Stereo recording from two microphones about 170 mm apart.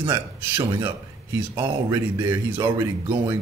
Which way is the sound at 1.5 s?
15° right (ahead or behind).